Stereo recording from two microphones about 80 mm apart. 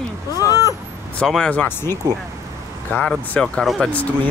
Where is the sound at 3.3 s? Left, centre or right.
Centre.